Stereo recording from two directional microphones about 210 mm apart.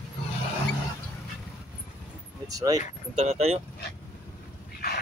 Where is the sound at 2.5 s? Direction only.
15° right (ahead or behind).